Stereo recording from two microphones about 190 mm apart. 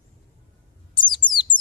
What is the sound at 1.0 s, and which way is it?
Bird, 25° left (ahead or behind).